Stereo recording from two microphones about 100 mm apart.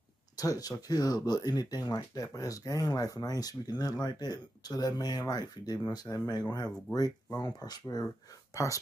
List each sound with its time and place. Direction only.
0.4 s speech: 40° left (ahead or behind)